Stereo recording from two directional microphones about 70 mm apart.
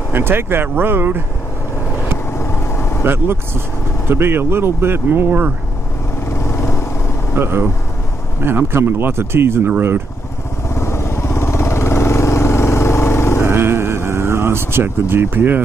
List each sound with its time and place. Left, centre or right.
0.1 s speech: right
2.3 s vehicle: left
3.0 s speech: right
6.3 s vehicle: left
7.3 s speech: right
10.7 s vehicle: left
13.4 s a sound: right